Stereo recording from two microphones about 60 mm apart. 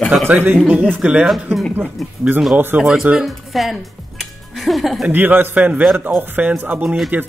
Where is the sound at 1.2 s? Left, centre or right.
Centre.